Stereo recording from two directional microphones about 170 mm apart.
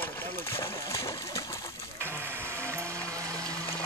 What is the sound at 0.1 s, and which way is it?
Splash, 15° left (ahead or behind).